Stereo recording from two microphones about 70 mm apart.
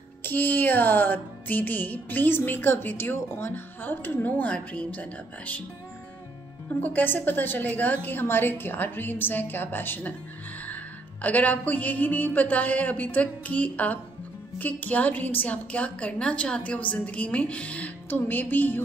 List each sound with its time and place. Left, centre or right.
0.2 s music: left
6.8 s music: left
11.2 s music: left